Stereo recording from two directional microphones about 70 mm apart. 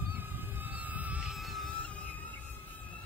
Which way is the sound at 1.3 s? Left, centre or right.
Centre.